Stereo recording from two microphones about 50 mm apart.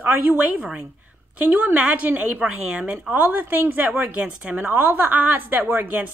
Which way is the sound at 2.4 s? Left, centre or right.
Right.